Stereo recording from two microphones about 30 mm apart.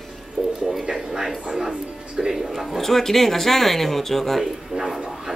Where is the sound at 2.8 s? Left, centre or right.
Centre.